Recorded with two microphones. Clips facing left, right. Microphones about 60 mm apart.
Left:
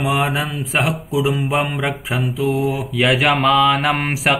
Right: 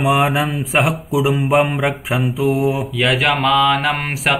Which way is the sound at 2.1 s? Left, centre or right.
Centre.